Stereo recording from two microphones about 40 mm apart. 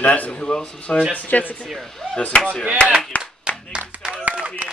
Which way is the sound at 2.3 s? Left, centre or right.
Left.